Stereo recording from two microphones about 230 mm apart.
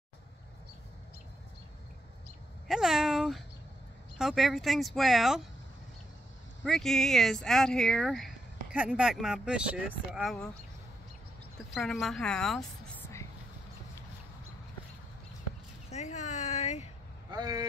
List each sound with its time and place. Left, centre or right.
2.7 s a sound: centre
4.2 s speech: centre
6.6 s speech: centre
11.7 s speech: centre
15.9 s a sound: left
17.3 s speech: centre